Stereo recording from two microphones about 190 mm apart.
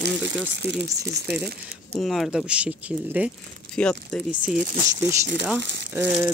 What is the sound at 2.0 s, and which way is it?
Speech, centre (ahead or behind).